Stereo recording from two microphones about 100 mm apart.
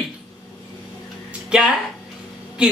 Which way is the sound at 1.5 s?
10° right (ahead or behind).